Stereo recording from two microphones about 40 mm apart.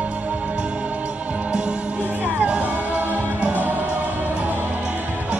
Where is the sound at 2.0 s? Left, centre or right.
Right.